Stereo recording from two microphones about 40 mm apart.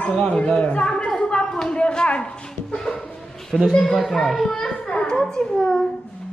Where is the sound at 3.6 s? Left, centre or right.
Centre.